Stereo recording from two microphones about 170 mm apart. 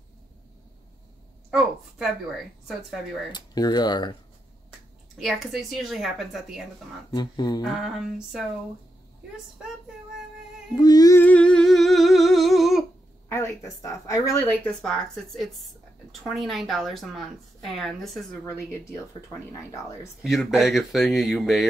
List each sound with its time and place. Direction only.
1.5 s speech: centre (ahead or behind)
3.3 s speech: 25° left (ahead or behind)
5.1 s speech: centre (ahead or behind)
7.1 s speech: 25° left (ahead or behind)
7.6 s speech: centre (ahead or behind)
10.8 s humming: 20° left (ahead or behind)
11.2 s humming: 5° left (ahead or behind)
13.3 s speech: 15° left (ahead or behind)
18.4 s speech: 15° left (ahead or behind)
20.2 s speech: centre (ahead or behind)